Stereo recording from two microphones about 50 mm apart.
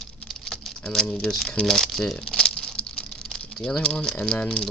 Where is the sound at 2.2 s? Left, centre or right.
Centre.